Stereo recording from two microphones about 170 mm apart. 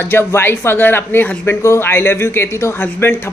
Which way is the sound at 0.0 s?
15° left (ahead or behind).